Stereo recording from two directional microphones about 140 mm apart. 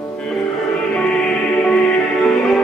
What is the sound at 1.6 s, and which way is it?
Music, centre (ahead or behind).